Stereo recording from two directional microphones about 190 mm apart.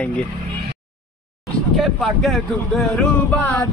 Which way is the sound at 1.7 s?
Centre (ahead or behind).